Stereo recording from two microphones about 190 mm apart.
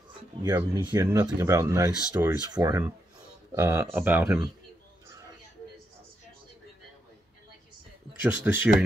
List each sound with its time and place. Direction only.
0.4 s speech: 20° right (ahead or behind)
8.5 s speech: 10° right (ahead or behind)